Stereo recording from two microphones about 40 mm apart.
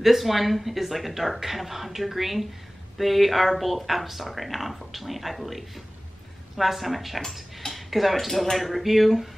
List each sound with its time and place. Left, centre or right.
0.0 s speech: centre